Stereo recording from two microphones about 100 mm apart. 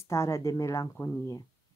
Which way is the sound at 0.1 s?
30° left (ahead or behind).